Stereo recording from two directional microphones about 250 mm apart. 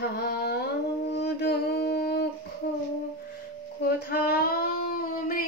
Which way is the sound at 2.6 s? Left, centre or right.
Left.